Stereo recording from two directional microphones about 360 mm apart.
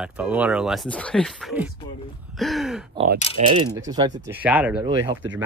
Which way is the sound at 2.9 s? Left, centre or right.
Right.